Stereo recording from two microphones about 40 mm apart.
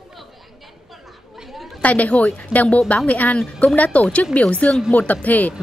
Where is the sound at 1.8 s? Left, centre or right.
Left.